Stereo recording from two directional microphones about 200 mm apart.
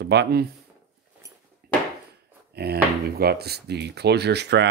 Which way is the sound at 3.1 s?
50° right (ahead or behind).